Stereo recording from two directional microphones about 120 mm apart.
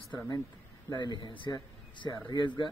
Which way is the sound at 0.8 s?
40° left (ahead or behind).